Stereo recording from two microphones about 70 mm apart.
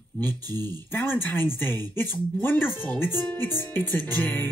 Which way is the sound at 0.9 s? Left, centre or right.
Left.